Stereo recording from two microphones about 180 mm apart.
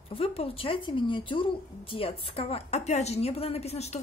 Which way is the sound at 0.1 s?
30° left (ahead or behind).